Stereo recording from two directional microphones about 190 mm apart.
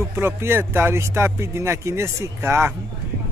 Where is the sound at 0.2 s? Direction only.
10° right (ahead or behind).